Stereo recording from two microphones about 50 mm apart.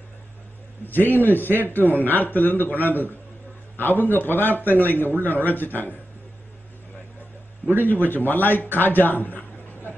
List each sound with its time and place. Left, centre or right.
0.8 s a man's voice: left
7.8 s a man's voice: left